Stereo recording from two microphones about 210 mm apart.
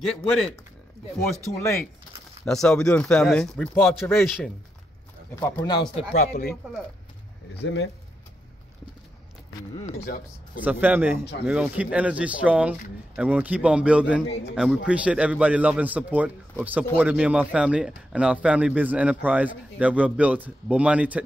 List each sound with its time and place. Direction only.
0.0 s speech: centre (ahead or behind)
2.4 s speech: 5° left (ahead or behind)
5.3 s speech: 15° left (ahead or behind)
6.1 s speech: 45° left (ahead or behind)
7.6 s speech: 60° left (ahead or behind)
9.8 s speech: 40° left (ahead or behind)
10.6 s speech: 10° right (ahead or behind)
14.2 s speech: 55° left (ahead or behind)
14.5 s speech: 5° right (ahead or behind)